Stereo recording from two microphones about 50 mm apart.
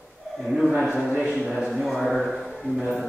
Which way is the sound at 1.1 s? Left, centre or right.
Centre.